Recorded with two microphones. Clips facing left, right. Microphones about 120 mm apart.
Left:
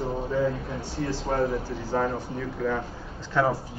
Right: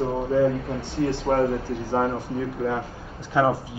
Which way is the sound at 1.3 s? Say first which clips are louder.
Right 4 dB; 40° right (ahead or behind).